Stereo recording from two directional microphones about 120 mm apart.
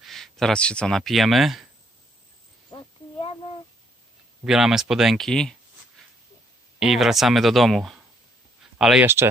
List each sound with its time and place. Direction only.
0.0 s speech: 5° left (ahead or behind)
2.7 s a sound: 50° left (ahead or behind)
4.5 s speech: 5° right (ahead or behind)
6.8 s speech: 5° right (ahead or behind)
9.0 s speech: 20° right (ahead or behind)